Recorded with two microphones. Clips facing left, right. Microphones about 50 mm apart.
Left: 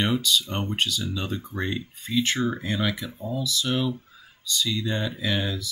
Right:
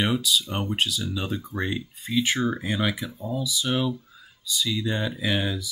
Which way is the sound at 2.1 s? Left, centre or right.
Centre.